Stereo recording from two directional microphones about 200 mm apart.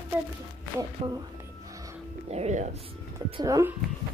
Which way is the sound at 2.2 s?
35° right (ahead or behind).